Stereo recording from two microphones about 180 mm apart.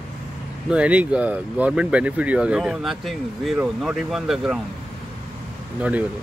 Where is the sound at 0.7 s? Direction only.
5° right (ahead or behind).